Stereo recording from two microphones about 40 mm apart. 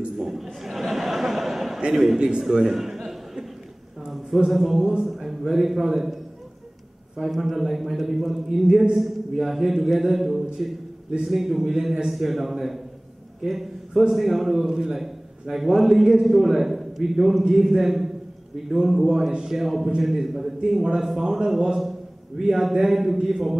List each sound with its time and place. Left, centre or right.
0.2 s a man's voice: centre
0.7 s a sound: centre
2.5 s chuckle: centre
4.5 s a man's voice: centre
7.2 s a man's voice: centre
12.1 s a man's voice: centre